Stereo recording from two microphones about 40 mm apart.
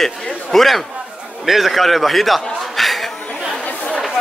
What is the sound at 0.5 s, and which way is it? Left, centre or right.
Speech, centre.